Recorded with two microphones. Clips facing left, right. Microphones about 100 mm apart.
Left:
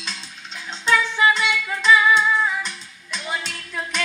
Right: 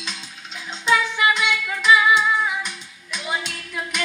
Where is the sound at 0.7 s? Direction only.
5° right (ahead or behind).